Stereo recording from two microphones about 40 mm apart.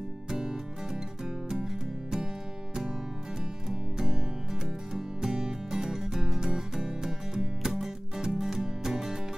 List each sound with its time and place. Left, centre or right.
0.3 s music: centre
3.6 s music: centre